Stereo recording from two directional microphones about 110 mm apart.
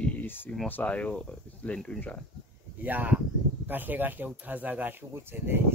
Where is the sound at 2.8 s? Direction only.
15° right (ahead or behind).